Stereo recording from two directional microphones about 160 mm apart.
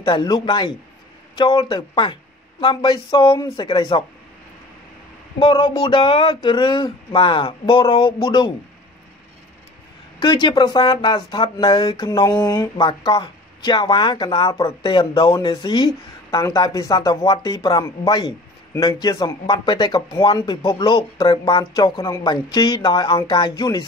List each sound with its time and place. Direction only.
0.0 s speech: 25° left (ahead or behind)
5.4 s speech: 30° left (ahead or behind)
10.2 s speech: 25° left (ahead or behind)